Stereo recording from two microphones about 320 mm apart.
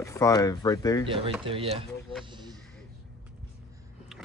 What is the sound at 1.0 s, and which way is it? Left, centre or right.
Speech, centre.